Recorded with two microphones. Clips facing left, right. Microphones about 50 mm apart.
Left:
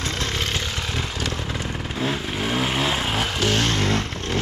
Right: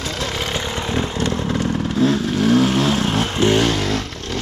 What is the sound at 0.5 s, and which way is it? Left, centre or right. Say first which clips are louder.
Chainsaw: right 4 dB; right.